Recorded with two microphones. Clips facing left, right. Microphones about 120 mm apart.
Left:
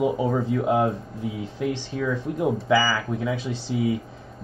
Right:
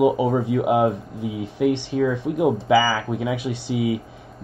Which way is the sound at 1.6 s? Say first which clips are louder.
Right 6 dB; 65° right (ahead or behind).